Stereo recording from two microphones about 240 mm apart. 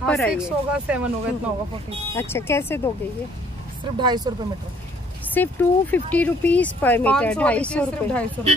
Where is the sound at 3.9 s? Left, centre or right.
Centre.